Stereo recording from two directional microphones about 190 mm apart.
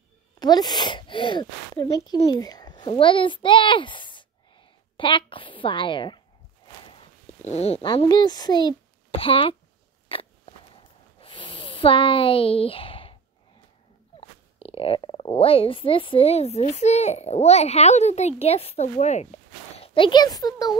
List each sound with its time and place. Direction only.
0.4 s a child's voice: 20° left (ahead or behind)
7.4 s a child's voice: 35° left (ahead or behind)
10.0 s biting: 30° left (ahead or behind)
11.1 s a sound: 25° left (ahead or behind)
14.6 s speech: 30° left (ahead or behind)